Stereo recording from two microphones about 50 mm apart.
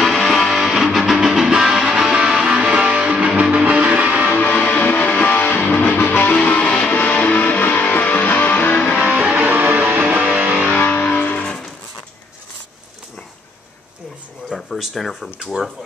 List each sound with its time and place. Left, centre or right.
0.0 s music: centre
0.6 s music: centre; by 4.3 s right
4.3 s music: left
6.3 s music: left
9.0 s music: right
10.8 s music: left
14.8 s speech: centre